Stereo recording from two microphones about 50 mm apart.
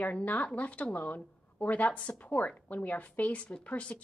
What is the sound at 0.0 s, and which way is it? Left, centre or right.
A woman's voice, left.